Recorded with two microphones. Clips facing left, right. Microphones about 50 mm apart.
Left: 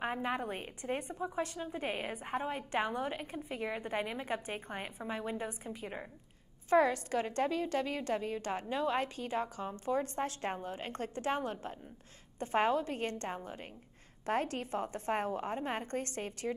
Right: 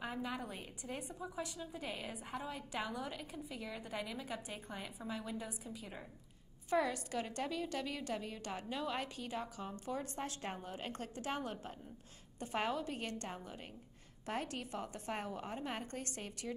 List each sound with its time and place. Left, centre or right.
0.0 s a woman's voice: left